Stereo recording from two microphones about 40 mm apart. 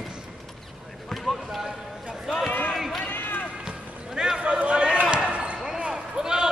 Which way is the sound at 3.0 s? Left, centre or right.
Left.